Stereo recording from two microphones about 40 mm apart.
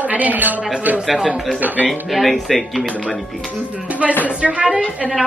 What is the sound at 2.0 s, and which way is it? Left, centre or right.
Speech, centre.